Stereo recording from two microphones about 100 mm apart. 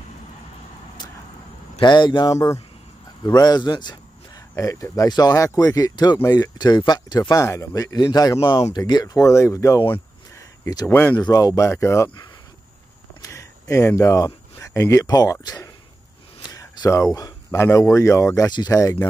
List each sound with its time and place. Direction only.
1.8 s speech: 50° left (ahead or behind)
4.6 s speech: 35° left (ahead or behind)
10.3 s a sound: 35° left (ahead or behind)
10.9 s speech: 20° left (ahead or behind)
11.1 s speech: 40° left (ahead or behind)
13.2 s a sound: 30° left (ahead or behind)
15.4 s speech: 40° left (ahead or behind)
18.5 s speech: 45° left (ahead or behind)
18.8 s speech: 30° left (ahead or behind)